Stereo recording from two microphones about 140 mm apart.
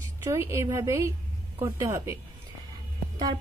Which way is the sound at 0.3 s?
20° right (ahead or behind).